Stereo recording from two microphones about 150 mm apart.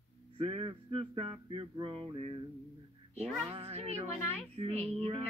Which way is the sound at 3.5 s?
40° right (ahead or behind).